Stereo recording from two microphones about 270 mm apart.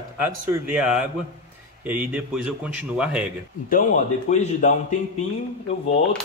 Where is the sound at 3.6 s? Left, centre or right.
Left.